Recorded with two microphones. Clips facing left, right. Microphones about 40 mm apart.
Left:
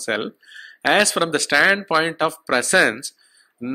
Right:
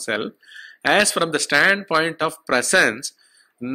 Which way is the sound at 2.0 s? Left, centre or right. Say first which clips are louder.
Left 1 dB; left.